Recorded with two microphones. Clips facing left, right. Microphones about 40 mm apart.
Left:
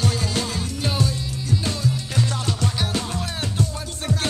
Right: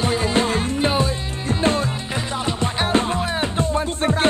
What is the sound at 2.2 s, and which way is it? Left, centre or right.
Music, right.